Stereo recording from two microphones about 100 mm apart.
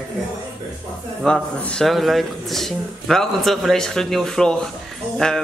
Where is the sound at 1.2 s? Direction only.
10° left (ahead or behind).